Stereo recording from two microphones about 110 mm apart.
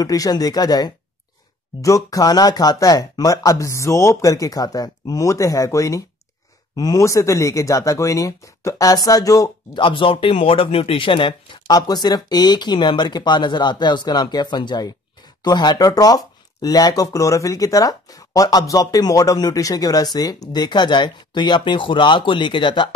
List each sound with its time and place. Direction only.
0.0 s speech: 35° left (ahead or behind)
9.8 s speech: 50° left (ahead or behind)